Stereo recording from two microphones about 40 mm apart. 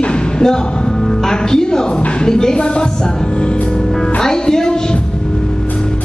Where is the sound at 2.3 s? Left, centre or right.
Centre.